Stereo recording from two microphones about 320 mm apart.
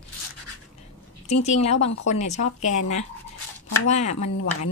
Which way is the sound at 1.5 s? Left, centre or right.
Centre.